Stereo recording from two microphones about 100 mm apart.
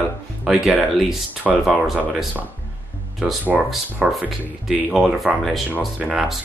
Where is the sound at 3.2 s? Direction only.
5° right (ahead or behind).